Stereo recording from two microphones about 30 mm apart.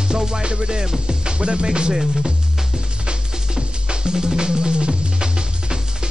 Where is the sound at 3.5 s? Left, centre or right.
Right.